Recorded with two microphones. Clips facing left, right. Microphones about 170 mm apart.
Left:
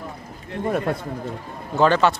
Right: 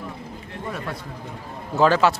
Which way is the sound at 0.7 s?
50° left (ahead or behind).